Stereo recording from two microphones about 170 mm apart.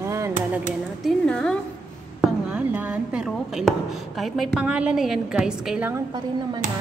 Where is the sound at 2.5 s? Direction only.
10° right (ahead or behind).